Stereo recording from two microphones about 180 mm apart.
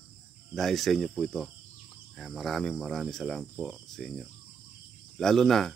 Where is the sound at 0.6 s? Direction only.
Centre (ahead or behind).